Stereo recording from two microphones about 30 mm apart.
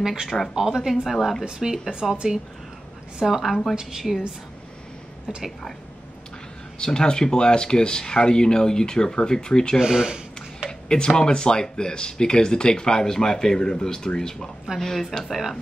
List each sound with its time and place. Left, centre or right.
0.0 s a woman's voice: centre
1.0 s a woman's voice: centre
1.4 s speech: right
3.3 s a woman's voice: centre
4.1 s speech: centre
6.8 s speech: left
9.8 s a sound: right
10.9 s speech: left
15.2 s speech: centre